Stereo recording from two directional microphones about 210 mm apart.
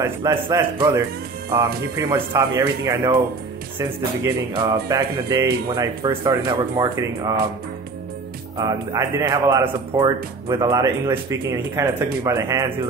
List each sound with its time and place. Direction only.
0.0 s speech: 15° right (ahead or behind)
4.2 s speech: 15° right (ahead or behind)
8.5 s speech: 15° right (ahead or behind)